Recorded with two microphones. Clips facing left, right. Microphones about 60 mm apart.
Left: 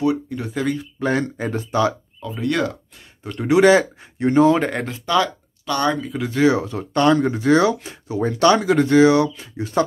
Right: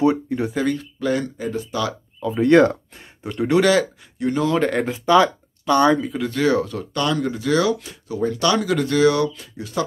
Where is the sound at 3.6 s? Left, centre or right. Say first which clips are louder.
Left 4 dB; left.